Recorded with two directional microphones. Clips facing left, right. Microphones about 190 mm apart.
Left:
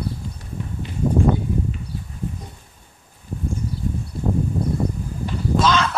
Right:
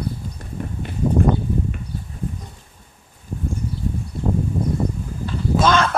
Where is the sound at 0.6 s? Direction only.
50° right (ahead or behind).